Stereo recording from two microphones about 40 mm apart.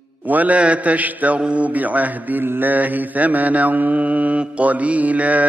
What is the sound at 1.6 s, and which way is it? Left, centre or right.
Mantra, right.